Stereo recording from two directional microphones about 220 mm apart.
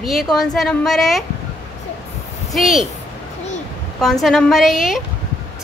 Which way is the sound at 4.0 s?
Centre (ahead or behind).